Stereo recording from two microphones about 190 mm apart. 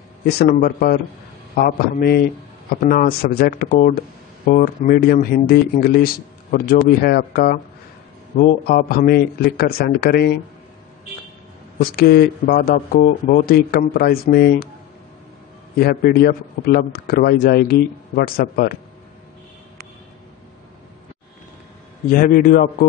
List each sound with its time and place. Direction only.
0.3 s a man's voice: 55° left (ahead or behind)
11.8 s a man's voice: 55° left (ahead or behind)
15.8 s a man's voice: 55° left (ahead or behind)
22.1 s a man's voice: 50° left (ahead or behind)